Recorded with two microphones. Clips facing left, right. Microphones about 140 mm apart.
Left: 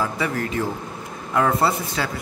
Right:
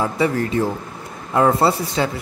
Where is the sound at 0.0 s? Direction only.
30° right (ahead or behind).